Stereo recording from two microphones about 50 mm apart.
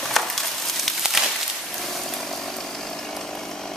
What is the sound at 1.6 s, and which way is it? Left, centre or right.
Chainsaw, centre.